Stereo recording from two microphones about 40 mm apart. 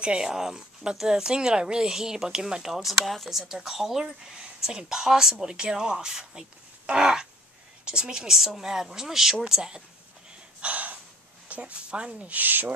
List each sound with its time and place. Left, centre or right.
0.2 s speech: centre
10.6 s gasp: right
11.4 s speech: right
12.4 s owl: right